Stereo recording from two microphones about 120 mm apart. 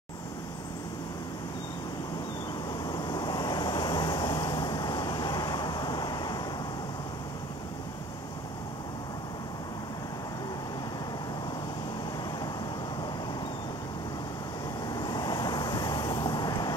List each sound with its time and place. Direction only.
2.8 s vehicle: 35° left (ahead or behind)
15.0 s vehicle: 35° left (ahead or behind)